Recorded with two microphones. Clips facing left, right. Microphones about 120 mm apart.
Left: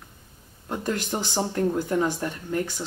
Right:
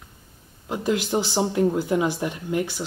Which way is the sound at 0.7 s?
10° right (ahead or behind).